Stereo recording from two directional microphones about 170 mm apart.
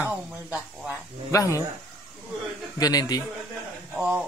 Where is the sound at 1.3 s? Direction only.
20° left (ahead or behind).